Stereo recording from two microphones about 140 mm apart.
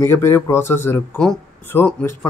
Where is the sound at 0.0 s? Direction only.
20° left (ahead or behind).